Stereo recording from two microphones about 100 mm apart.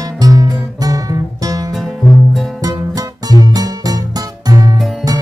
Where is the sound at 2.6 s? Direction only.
40° right (ahead or behind).